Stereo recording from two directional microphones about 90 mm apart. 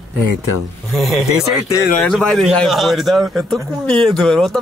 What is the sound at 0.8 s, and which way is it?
Speech, centre (ahead or behind).